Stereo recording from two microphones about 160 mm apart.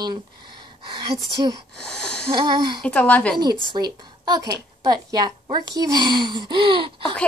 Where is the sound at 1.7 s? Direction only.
5° left (ahead or behind).